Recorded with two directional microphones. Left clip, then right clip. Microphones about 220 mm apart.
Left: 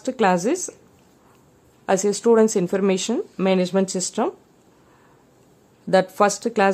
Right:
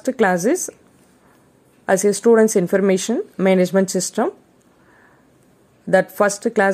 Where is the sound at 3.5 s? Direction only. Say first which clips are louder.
Right 5 dB; 15° right (ahead or behind).